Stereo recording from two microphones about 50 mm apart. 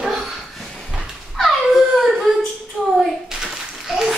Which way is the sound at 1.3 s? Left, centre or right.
Centre.